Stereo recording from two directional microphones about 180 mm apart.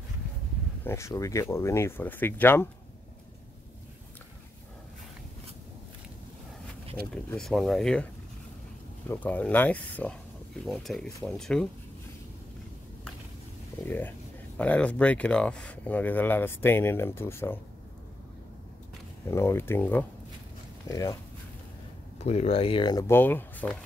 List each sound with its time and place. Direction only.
0.8 s speech: 15° left (ahead or behind)
7.2 s speech: centre (ahead or behind)
9.1 s speech: 10° left (ahead or behind)
13.8 s speech: 10° left (ahead or behind)
19.3 s speech: 15° left (ahead or behind)
22.2 s speech: 35° left (ahead or behind); by 23.8 s 10° left (ahead or behind)